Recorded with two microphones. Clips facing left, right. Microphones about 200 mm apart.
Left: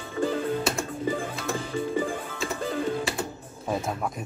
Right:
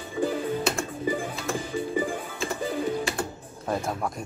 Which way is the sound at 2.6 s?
10° right (ahead or behind).